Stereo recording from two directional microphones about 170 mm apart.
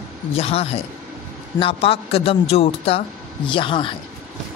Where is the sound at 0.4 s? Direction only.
35° left (ahead or behind).